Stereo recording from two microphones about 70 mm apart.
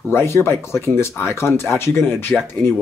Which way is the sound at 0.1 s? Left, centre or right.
Left.